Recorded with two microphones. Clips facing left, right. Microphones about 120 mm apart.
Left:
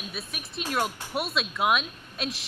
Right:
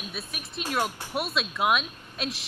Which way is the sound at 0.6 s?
10° right (ahead or behind).